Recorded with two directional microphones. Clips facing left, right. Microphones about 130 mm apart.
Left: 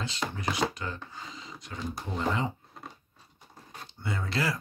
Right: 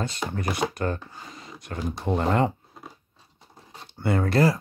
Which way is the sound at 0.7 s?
55° right (ahead or behind).